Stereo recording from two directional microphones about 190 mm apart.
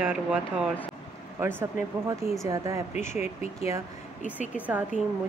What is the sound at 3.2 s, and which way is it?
Speech, 35° left (ahead or behind).